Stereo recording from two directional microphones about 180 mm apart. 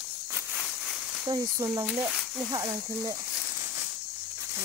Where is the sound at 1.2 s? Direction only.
20° right (ahead or behind).